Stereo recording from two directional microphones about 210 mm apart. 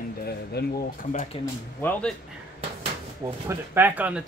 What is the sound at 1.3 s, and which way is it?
Speech, 25° left (ahead or behind).